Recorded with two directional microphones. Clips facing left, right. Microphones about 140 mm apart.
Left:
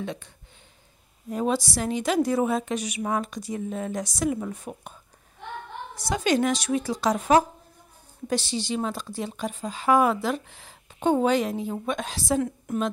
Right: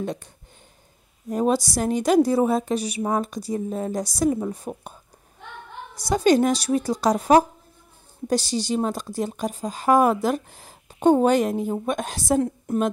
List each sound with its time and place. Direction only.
0.0 s speech: 40° right (ahead or behind)
1.3 s a woman's voice: 40° right (ahead or behind)
5.9 s a woman's voice: 40° right (ahead or behind)